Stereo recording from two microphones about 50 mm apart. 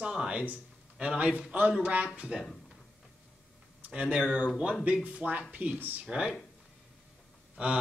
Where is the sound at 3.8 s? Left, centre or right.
Centre.